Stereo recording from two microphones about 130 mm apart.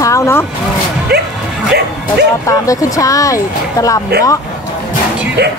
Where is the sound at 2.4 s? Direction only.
25° left (ahead or behind).